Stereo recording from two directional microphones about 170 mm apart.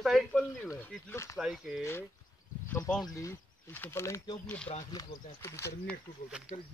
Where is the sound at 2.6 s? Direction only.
15° left (ahead or behind).